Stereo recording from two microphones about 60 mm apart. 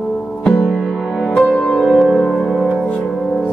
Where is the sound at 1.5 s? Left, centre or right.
Centre.